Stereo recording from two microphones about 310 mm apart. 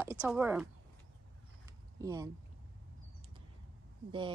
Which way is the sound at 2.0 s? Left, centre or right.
Centre.